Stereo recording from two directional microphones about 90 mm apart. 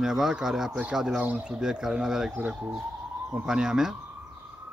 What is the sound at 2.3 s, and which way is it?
Speech, 20° right (ahead or behind).